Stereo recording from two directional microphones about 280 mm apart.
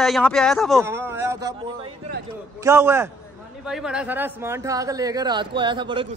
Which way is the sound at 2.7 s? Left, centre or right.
Centre.